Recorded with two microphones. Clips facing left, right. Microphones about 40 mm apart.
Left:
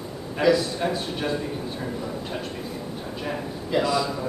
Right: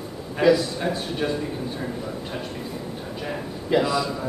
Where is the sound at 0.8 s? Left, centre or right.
Centre.